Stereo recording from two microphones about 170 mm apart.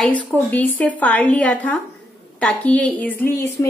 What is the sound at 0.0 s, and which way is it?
A woman's voice, 5° left (ahead or behind).